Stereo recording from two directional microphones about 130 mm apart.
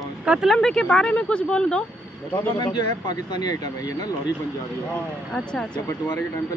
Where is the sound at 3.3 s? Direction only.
30° left (ahead or behind).